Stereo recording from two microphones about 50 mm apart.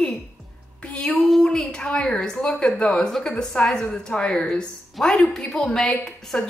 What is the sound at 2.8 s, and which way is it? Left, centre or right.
A woman's voice, centre.